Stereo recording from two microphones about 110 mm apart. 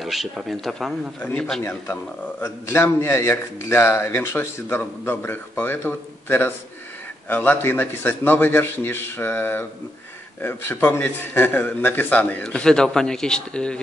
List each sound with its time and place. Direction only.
0.0 s a man's voice: centre (ahead or behind)
1.6 s a man's voice: 25° left (ahead or behind); by 13.7 s 10° left (ahead or behind)